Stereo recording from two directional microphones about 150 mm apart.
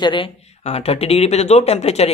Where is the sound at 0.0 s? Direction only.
35° left (ahead or behind).